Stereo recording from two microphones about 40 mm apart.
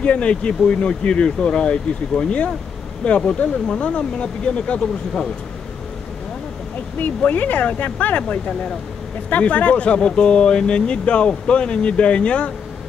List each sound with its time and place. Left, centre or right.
0.0 s speech: left
7.2 s speech: left